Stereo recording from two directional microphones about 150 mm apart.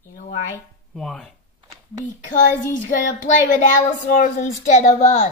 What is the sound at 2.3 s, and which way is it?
A child's voice, 55° left (ahead or behind).